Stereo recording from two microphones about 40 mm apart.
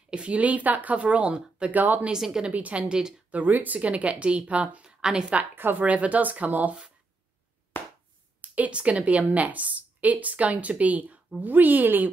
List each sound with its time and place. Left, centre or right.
0.1 s a woman's voice: right
1.7 s a woman's voice: right
2.1 s a woman's voice: centre
2.5 s a woman's voice: right
2.9 s a woman's voice: centre
3.3 s a woman's voice: right
4.8 s a sound: centre
5.8 s a woman's voice: right
7.7 s clapping: left
8.4 s a sound: right
8.7 s a woman's voice: right
11.4 s a woman's voice: right